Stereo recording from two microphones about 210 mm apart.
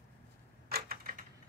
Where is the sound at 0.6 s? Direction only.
45° right (ahead or behind).